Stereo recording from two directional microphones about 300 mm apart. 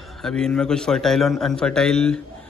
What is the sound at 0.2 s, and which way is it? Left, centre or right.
A man's voice, centre.